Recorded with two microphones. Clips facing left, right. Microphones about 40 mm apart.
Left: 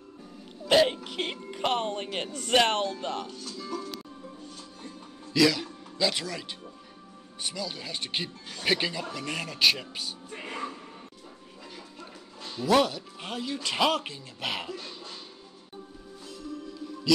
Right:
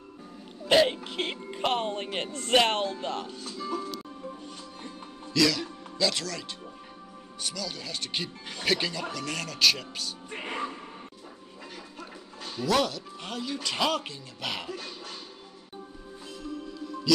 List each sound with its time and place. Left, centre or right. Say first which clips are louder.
0.7 s music: even; centre
1.7 s speech: even; centre
5.3 s speech: left 2 dB; centre
10.3 s music: right 3 dB; right
12.4 s a sound: right 1 dB; right
12.6 s speech: left 3 dB; centre
14.8 s cough: right 1 dB; right